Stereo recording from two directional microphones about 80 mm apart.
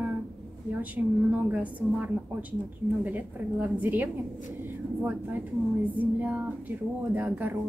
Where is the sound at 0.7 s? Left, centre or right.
Right.